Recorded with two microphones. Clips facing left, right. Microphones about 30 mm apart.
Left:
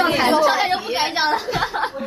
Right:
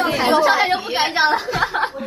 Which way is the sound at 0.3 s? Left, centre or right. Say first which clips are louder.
Right 1 dB; centre.